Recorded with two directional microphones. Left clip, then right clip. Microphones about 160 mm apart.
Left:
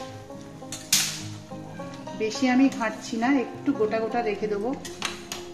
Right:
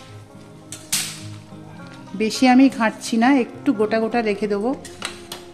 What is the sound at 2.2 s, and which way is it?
A woman's voice, 90° right.